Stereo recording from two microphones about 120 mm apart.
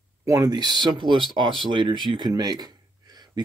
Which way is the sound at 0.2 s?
30° right (ahead or behind).